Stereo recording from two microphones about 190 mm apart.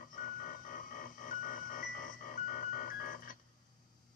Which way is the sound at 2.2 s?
45° left (ahead or behind).